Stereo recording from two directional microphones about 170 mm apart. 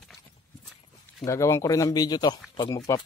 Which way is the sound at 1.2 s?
15° left (ahead or behind).